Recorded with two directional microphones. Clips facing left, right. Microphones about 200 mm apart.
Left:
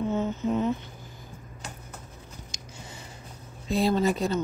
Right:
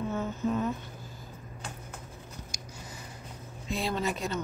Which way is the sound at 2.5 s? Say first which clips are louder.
Right 1 dB; 25° left (ahead or behind).